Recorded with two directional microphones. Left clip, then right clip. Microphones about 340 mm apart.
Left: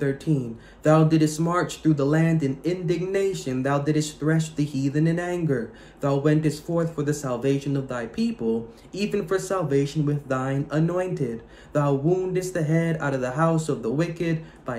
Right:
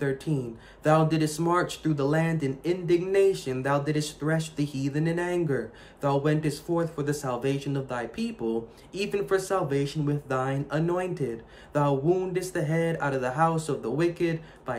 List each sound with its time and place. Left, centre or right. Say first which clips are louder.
0.0 s speech: left 3 dB; centre